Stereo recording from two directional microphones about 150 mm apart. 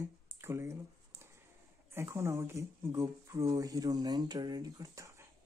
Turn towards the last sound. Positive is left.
turn(degrees=-20)  # may be behind; listen again after turning